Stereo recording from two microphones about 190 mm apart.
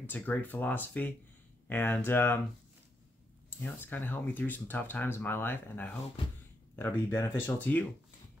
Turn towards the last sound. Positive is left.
turn(degrees=10)  # may be behind; listen again after turning